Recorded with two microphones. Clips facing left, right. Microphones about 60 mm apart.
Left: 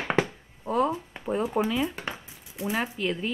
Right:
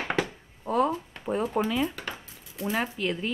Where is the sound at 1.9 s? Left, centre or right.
Left.